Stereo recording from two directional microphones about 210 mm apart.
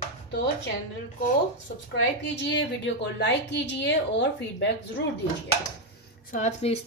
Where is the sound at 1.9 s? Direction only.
60° left (ahead or behind).